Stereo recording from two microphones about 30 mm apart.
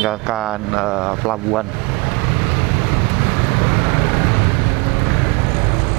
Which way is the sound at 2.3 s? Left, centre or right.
Centre.